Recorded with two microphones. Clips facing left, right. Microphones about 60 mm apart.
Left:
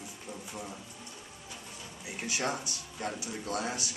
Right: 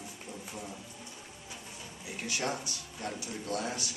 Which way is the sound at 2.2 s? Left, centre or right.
Centre.